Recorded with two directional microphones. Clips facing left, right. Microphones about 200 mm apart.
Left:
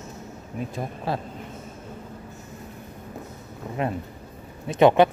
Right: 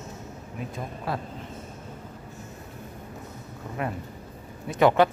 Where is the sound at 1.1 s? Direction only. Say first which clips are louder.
Left 3 dB; 25° left (ahead or behind).